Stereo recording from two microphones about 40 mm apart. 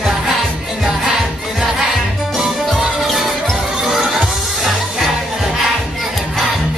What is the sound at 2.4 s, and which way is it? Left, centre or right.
Music, right.